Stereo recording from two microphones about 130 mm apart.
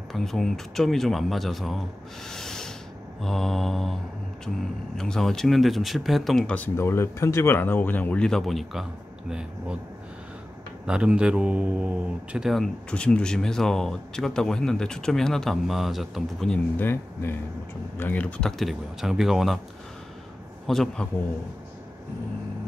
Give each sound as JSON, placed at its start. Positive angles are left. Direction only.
{"t": 0.1, "sound": "speech", "side_deg": 0}
{"t": 2.2, "sound": "snort", "side_deg": 5}
{"t": 3.2, "sound": "speech", "side_deg": 5}
{"t": 10.9, "sound": "speech", "side_deg": -5}
{"t": 16.7, "sound": "speech", "side_deg": 15}
{"t": 18.6, "sound": "speech", "side_deg": 0}
{"t": 20.6, "sound": "speech", "side_deg": 0}